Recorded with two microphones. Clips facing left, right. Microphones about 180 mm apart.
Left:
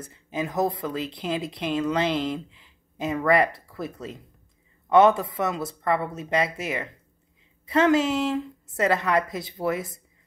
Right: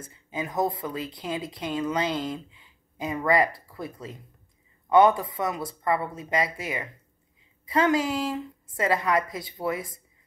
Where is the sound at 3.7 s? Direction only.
80° left.